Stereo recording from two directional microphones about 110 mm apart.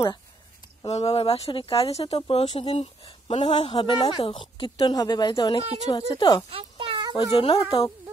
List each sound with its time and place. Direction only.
0.8 s speech: 70° left (ahead or behind)
2.4 s a woman's voice: 50° left (ahead or behind)
6.5 s a sound: 55° right (ahead or behind)
7.0 s cat: 35° right (ahead or behind)
7.3 s speech: 55° left (ahead or behind)